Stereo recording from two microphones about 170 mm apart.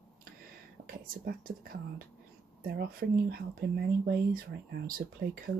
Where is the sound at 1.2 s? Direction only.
55° right (ahead or behind).